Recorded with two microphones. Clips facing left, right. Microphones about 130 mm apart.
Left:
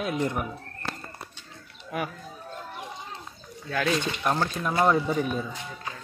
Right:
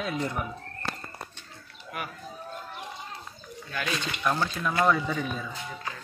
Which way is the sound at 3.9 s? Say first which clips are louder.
Left 2 dB; 25° left (ahead or behind).